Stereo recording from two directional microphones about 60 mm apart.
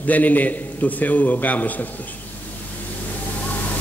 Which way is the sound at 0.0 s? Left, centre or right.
Left.